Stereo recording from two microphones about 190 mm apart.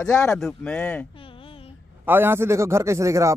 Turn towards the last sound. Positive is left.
turn(degrees=-15)  # may be behind; listen again after turning